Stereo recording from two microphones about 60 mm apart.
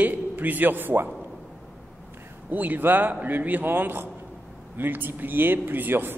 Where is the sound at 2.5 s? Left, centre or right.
Right.